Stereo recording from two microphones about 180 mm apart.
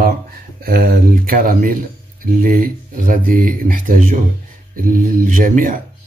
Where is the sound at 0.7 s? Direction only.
55° right (ahead or behind).